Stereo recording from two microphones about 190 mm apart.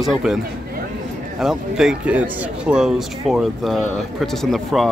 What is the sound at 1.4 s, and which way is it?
Speech, centre (ahead or behind).